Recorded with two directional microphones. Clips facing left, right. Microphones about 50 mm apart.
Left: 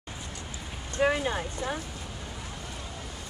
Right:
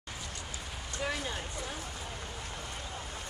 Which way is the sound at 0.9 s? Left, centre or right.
Left.